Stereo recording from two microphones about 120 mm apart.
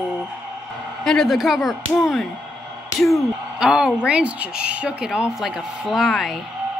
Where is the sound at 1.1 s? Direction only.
Centre (ahead or behind).